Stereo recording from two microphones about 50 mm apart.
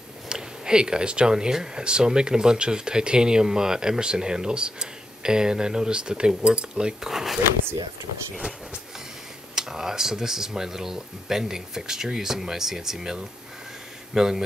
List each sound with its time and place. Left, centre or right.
0.3 s speech: centre
7.1 s speech: centre
9.6 s speech: centre